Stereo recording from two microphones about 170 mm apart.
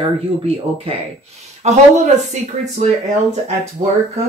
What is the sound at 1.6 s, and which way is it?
Speech, 45° right (ahead or behind).